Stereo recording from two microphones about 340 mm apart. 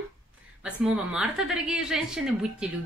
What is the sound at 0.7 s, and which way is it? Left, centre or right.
A woman's voice, centre.